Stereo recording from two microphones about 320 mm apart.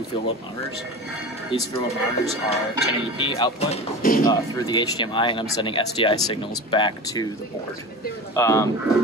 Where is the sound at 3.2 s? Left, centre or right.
Centre.